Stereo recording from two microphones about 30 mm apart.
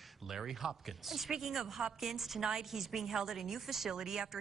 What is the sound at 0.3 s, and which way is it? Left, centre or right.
A woman's voice, centre.